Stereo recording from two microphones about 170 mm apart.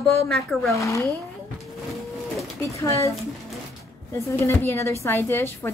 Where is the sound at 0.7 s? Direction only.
20° left (ahead or behind).